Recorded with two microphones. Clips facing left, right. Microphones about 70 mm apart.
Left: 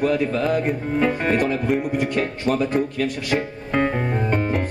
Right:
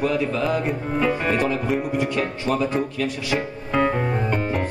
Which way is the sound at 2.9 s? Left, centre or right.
Left.